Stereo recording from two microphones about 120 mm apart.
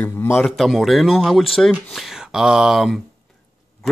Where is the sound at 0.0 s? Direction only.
20° left (ahead or behind).